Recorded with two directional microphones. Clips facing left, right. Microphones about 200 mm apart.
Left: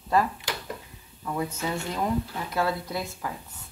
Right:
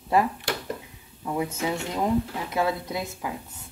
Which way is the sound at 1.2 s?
15° right (ahead or behind).